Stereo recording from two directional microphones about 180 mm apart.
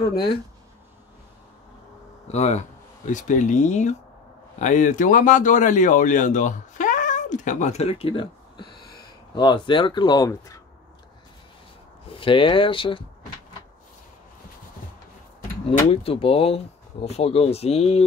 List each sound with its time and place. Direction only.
2.2 s speech: 35° left (ahead or behind); by 10.6 s 20° left (ahead or behind)
12.1 s speech: 30° left (ahead or behind)
15.9 s speech: 30° left (ahead or behind)